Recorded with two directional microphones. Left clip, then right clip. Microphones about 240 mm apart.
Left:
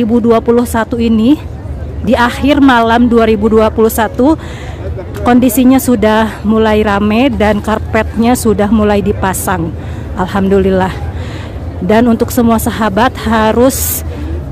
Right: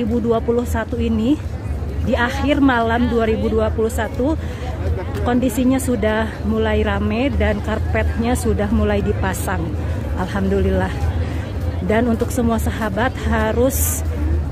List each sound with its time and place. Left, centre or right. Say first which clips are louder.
0.3 s speech: left 9 dB; left